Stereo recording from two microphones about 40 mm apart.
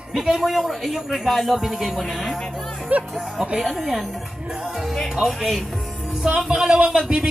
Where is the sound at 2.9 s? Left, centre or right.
Right.